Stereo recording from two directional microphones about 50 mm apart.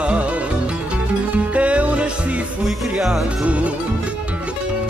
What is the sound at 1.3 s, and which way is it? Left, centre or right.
Music, right.